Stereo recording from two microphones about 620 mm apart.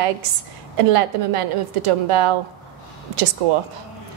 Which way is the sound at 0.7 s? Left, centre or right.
Right.